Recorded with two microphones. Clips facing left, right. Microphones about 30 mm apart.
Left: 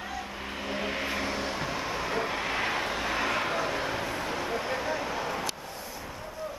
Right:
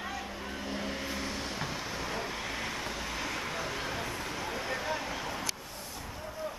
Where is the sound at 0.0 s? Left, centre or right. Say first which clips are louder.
Left 2 dB; centre.